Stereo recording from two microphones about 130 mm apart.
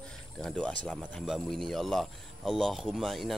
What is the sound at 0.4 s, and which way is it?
Speech, 5° left (ahead or behind).